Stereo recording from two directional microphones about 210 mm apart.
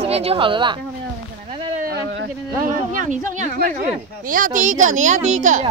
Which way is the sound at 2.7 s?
40° right (ahead or behind).